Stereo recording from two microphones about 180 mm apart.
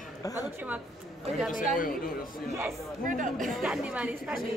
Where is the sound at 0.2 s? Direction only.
20° left (ahead or behind).